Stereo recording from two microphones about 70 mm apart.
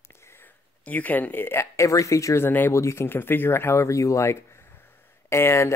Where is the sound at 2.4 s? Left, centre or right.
Left.